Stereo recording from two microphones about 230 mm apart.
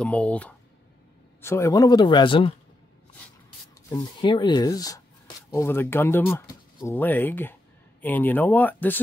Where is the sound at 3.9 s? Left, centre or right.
Centre.